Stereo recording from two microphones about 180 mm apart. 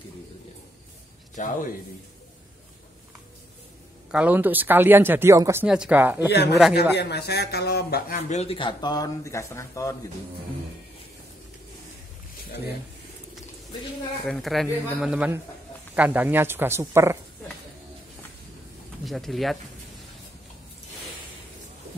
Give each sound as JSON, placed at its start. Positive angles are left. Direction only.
{"t": 1.3, "sound": "a man's voice", "side_deg": 45}
{"t": 4.1, "sound": "speech", "side_deg": -10}
{"t": 6.3, "sound": "speech", "side_deg": 65}
{"t": 8.1, "sound": "speech", "side_deg": 40}
{"t": 14.2, "sound": "speech", "side_deg": 0}
{"t": 19.0, "sound": "speech", "side_deg": 0}